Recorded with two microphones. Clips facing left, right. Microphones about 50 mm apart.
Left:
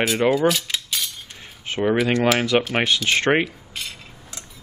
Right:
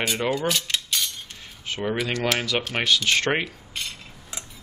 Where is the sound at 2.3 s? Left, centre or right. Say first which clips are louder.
Left 6 dB; centre.